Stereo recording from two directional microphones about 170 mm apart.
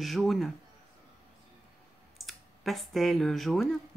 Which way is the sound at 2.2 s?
Centre (ahead or behind).